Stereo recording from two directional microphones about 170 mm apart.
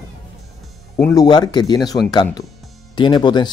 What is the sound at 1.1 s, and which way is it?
Speech, 25° left (ahead or behind).